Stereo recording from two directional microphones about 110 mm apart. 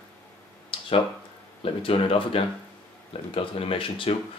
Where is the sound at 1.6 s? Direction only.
55° left (ahead or behind).